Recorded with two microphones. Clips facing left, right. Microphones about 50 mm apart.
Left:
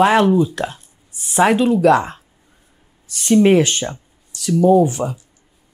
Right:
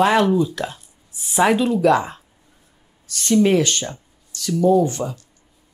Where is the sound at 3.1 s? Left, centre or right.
Centre.